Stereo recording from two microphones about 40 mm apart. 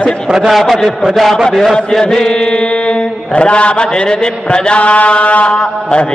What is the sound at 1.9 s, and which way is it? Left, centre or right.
Mantra, centre.